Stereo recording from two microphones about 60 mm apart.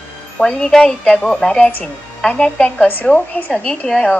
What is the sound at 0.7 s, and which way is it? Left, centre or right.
A woman's voice, centre.